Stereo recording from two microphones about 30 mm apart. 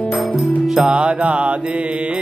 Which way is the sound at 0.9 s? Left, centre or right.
Right.